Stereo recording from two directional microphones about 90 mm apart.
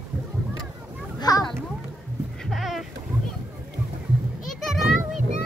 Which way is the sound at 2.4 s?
Centre (ahead or behind).